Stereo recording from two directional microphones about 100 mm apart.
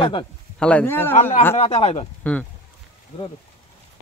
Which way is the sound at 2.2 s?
15° left (ahead or behind).